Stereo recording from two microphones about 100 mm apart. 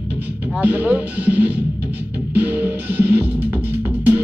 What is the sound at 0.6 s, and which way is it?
Music, 20° right (ahead or behind).